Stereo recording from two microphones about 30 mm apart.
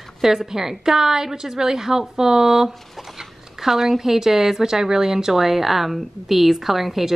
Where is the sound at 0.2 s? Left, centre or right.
Centre.